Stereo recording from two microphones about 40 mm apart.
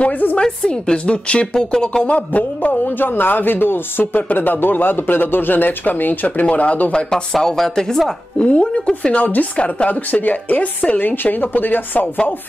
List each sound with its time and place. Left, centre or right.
0.0 s speech: left
0.7 s a woman's voice: left
2.0 s speech: left
3.0 s speech: left
6.9 s a woman's voice: left
8.4 s a woman's voice: left
9.1 s speech: left
11.1 s speech: left